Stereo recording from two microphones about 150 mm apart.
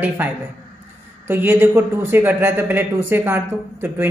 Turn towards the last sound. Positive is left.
turn(degrees=-15)  # may be behind; listen again after turning